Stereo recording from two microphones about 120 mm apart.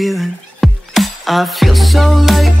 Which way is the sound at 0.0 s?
Centre (ahead or behind).